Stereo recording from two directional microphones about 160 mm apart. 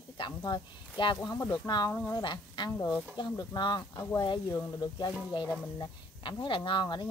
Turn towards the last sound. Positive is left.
turn(degrees=30)  # may be behind; listen again after turning